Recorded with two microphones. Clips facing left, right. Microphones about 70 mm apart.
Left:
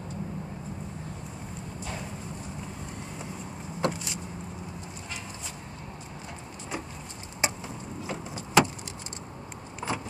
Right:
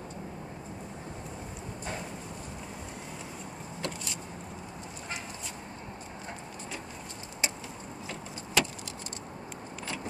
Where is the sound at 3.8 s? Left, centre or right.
Left.